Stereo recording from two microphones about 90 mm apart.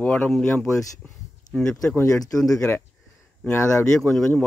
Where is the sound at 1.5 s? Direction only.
10° left (ahead or behind).